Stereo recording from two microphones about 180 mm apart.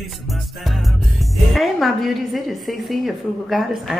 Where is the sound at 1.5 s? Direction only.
Centre (ahead or behind).